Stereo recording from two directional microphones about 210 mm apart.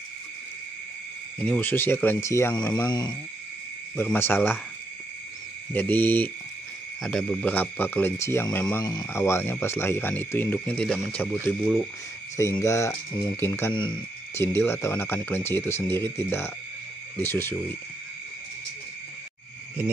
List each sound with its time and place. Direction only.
1.4 s speech: 5° left (ahead or behind)
5.7 s speech: 10° left (ahead or behind)